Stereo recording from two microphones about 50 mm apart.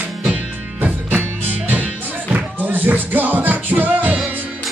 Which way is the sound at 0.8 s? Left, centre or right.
Right.